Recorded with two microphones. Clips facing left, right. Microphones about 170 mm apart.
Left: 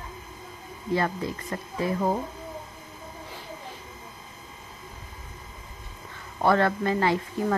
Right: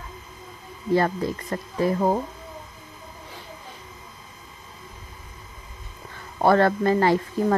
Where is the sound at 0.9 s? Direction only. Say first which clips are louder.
Right 5 dB; 40° right (ahead or behind).